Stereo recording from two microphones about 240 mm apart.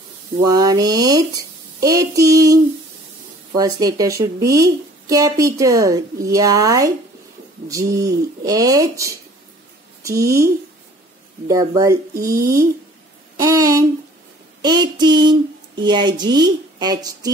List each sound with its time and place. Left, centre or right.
0.4 s speech: centre
13.4 s a sound: centre
14.6 s speech: centre